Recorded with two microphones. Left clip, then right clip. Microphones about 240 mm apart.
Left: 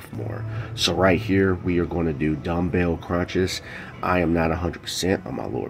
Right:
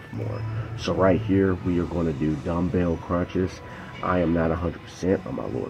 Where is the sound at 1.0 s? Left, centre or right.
Centre.